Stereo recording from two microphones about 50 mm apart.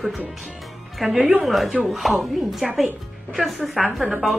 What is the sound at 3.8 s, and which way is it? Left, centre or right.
Speech, centre.